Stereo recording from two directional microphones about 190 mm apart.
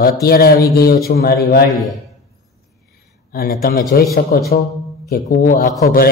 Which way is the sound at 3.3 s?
55° left (ahead or behind).